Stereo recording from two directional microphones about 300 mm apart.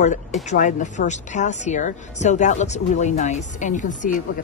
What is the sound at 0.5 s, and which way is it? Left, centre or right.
A woman's voice, left.